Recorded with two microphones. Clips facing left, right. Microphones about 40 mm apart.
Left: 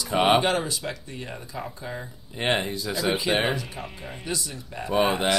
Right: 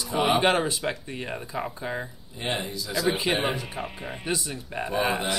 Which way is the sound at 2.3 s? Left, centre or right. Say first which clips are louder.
Left 5 dB; left.